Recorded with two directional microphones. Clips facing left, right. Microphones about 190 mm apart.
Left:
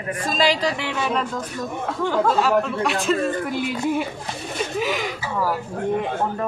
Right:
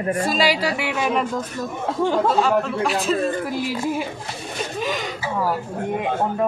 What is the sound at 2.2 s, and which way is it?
Speech, centre (ahead or behind).